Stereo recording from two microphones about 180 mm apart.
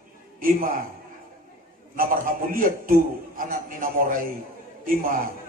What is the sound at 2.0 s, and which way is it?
A man's voice, 50° right (ahead or behind).